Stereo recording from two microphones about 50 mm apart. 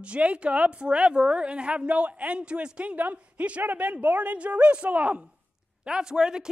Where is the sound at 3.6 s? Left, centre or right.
Right.